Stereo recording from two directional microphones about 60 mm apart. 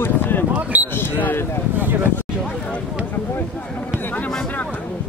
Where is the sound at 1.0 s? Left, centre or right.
Left.